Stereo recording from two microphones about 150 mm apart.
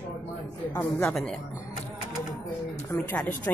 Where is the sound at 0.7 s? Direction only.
15° left (ahead or behind).